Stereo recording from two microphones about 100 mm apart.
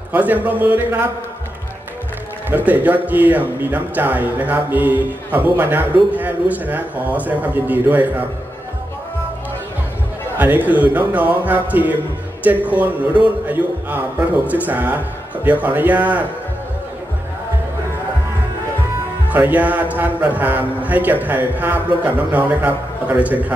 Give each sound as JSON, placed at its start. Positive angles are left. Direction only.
{"t": 0.1, "sound": "speech", "side_deg": -15}
{"t": 2.5, "sound": "speech", "side_deg": -15}
{"t": 10.3, "sound": "speech", "side_deg": -15}
{"t": 19.2, "sound": "speech", "side_deg": -20}